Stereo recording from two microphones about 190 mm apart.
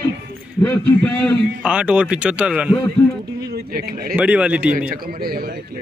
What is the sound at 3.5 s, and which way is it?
Speech, 50° right (ahead or behind).